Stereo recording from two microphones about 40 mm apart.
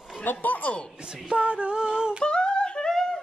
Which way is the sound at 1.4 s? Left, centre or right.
Right.